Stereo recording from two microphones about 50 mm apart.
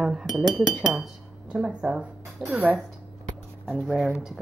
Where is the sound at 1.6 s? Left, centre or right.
Right.